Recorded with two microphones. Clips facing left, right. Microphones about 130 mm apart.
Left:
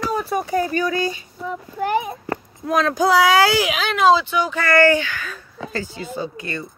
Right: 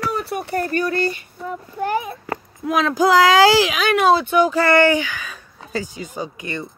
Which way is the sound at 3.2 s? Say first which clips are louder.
Right 3 dB; 90° right.